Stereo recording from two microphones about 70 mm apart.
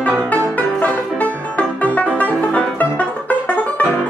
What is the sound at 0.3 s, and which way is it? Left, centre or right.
Music, left.